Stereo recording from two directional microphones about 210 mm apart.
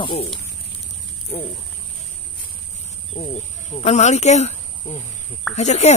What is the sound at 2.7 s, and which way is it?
Speech, 30° left (ahead or behind).